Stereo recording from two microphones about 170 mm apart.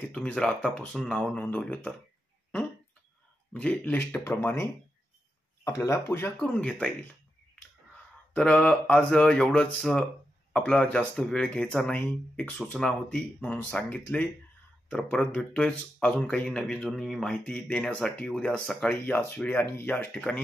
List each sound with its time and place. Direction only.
0.1 s speech: 5° left (ahead or behind)
3.5 s speech: 10° left (ahead or behind)
8.4 s speech: 5° left (ahead or behind)